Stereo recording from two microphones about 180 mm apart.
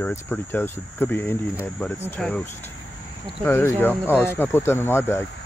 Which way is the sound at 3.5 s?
10° left (ahead or behind).